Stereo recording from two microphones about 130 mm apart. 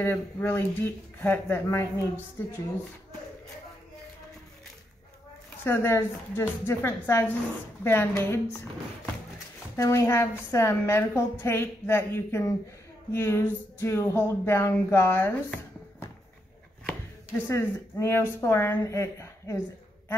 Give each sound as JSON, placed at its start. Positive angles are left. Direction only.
{"t": 0.0, "sound": "speech", "side_deg": 15}
{"t": 5.6, "sound": "a woman's voice", "side_deg": 20}
{"t": 9.8, "sound": "a woman's voice", "side_deg": 25}
{"t": 17.5, "sound": "a woman's voice", "side_deg": 20}